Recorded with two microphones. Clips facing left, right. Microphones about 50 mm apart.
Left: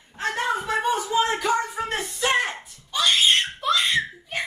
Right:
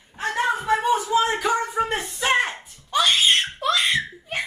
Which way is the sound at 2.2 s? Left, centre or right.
Right.